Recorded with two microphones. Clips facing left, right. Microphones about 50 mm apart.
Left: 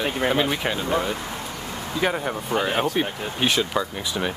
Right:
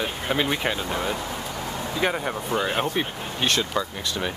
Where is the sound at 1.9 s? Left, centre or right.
Centre.